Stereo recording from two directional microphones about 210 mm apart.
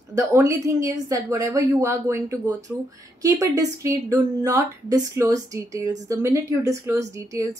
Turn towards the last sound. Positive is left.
turn(degrees=-15)  # may be behind; listen again after turning